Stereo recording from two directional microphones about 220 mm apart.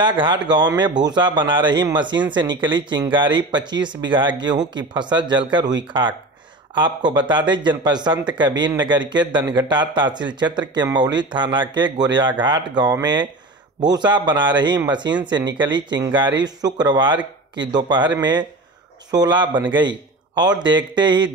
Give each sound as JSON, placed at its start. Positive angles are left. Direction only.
{"t": 0.0, "sound": "speech", "side_deg": -20}
{"t": 11.2, "sound": "a man's voice", "side_deg": -20}